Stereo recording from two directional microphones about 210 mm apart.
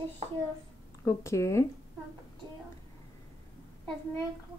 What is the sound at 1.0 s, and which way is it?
Speech, 15° left (ahead or behind).